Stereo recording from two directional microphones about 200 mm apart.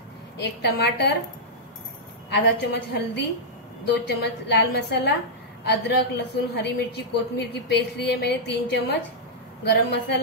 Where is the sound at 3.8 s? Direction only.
60° left (ahead or behind).